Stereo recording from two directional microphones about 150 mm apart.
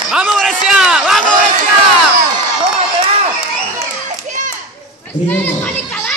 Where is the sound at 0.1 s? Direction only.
5° right (ahead or behind).